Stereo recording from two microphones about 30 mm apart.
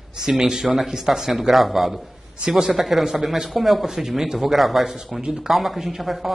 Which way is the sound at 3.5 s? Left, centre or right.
Centre.